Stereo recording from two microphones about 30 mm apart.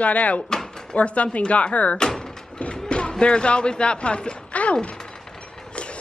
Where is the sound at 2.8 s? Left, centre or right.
Left.